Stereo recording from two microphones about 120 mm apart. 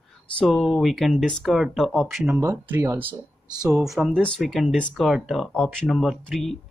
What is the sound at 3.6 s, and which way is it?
Speech, 5° right (ahead or behind).